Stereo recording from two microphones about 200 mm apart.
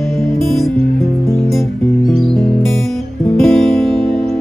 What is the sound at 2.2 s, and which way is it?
Music, centre (ahead or behind).